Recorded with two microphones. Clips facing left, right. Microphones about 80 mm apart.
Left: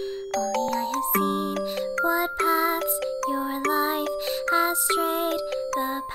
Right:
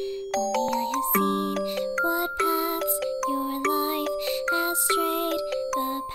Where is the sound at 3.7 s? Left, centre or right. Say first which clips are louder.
Left 1 dB; left.